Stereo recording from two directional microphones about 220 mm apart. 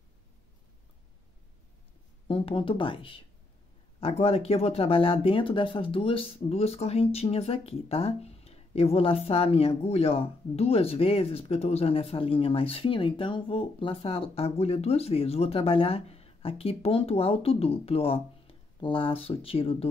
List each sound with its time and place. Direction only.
2.2 s speech: 25° left (ahead or behind)